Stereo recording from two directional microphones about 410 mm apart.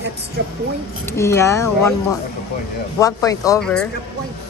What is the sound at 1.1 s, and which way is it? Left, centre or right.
Speech, centre.